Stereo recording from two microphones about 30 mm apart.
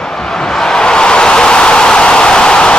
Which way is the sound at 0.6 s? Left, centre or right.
Left.